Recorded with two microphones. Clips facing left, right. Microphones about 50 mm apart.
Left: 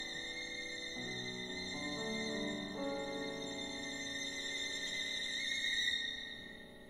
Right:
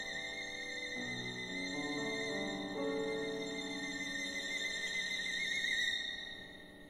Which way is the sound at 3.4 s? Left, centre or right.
Right.